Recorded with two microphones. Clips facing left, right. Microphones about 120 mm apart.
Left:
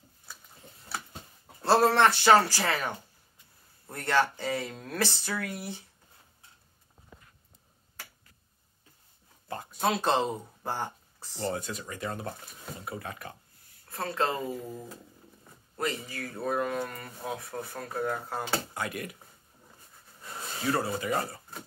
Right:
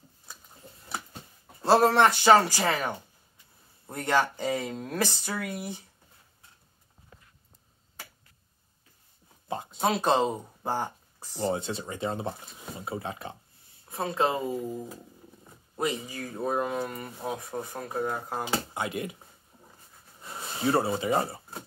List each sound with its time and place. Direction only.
1.6 s speech: 15° right (ahead or behind)
9.5 s speech: 20° right (ahead or behind)
11.6 s speech: 25° right (ahead or behind)
20.6 s speech: 25° right (ahead or behind)